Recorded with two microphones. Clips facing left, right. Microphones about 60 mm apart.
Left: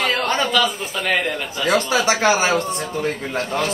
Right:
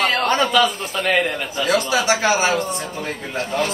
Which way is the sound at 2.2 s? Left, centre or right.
Left.